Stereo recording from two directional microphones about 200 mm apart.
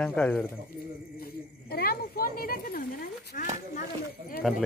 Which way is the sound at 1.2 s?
50° left (ahead or behind).